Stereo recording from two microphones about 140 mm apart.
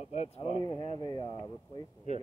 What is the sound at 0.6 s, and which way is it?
Speech, 35° left (ahead or behind).